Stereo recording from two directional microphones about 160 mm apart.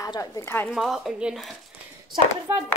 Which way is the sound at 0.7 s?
Centre (ahead or behind).